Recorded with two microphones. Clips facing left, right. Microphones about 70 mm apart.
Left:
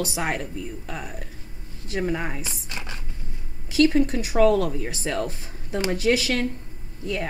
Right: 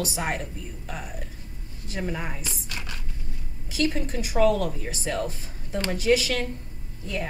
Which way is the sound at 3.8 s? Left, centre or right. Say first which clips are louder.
Left 5 dB; left.